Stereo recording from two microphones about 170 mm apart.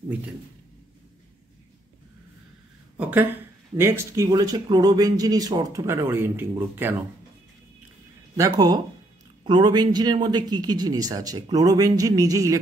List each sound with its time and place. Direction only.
3.0 s a sound: 10° right (ahead or behind)
3.7 s speech: 15° right (ahead or behind)
8.4 s speech: 20° right (ahead or behind)